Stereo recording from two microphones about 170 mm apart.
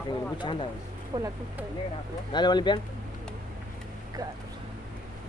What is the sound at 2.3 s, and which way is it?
Speech, 25° left (ahead or behind).